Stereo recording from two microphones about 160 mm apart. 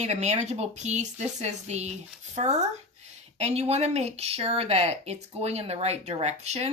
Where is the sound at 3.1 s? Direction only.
45° right (ahead or behind).